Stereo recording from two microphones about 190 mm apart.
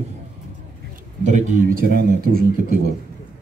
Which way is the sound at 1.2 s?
40° right (ahead or behind).